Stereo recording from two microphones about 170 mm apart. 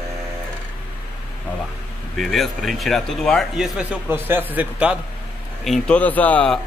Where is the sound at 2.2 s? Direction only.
Centre (ahead or behind).